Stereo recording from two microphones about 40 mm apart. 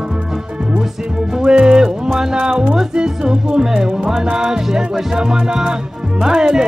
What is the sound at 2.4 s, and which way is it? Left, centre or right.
Music, right.